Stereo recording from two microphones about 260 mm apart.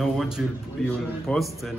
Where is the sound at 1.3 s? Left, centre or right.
Centre.